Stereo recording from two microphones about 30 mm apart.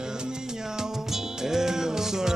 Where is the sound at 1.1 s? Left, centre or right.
Centre.